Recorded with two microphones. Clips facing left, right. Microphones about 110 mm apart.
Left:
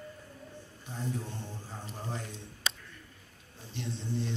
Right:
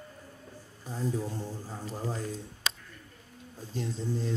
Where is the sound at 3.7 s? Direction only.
40° right (ahead or behind).